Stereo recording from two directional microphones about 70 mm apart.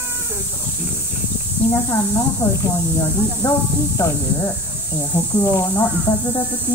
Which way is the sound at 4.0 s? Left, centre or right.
Left.